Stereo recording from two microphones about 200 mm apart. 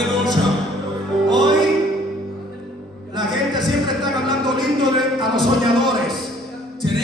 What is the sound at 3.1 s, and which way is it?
Music, 20° right (ahead or behind).